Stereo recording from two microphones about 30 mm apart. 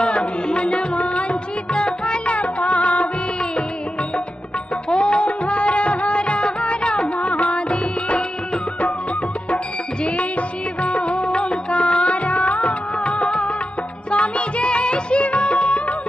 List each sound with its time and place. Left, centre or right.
0.1 s music: left
4.8 s music of bollywood: left
10.8 s music of bollywood: left
14.1 s music: left